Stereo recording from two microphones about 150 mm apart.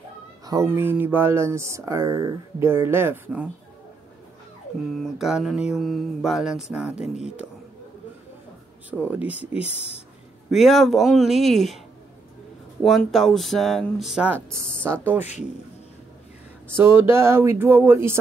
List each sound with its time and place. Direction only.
0.7 s speech: 15° right (ahead or behind)
4.9 s mantra: centre (ahead or behind)
9.2 s speech: 10° right (ahead or behind)
9.6 s speech: 45° left (ahead or behind)
10.5 s mantra: centre (ahead or behind)
12.8 s mantra: centre (ahead or behind)
14.3 s speech: 15° right (ahead or behind)
16.7 s speech: 15° right (ahead or behind)